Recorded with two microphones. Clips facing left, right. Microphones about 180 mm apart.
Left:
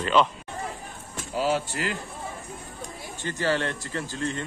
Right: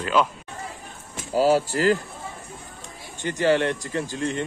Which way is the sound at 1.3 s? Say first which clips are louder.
Right 7 dB; 40° right (ahead or behind).